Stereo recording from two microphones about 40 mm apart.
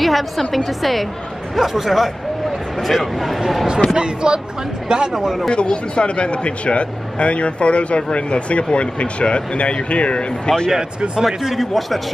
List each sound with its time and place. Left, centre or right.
0.0 s a man's voice: centre
3.9 s speech: right
5.1 s speech: centre
5.5 s speech: left
10.7 s speech: centre
11.2 s a man's voice: centre